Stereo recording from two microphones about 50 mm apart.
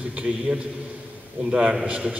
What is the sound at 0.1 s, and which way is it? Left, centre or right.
A man's voice, centre.